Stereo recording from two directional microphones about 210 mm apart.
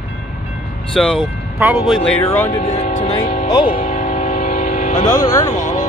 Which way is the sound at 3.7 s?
40° left (ahead or behind).